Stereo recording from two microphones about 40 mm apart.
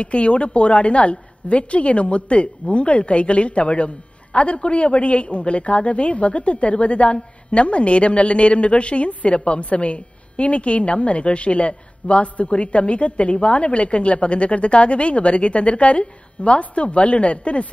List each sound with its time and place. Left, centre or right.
0.0 s a woman's voice: left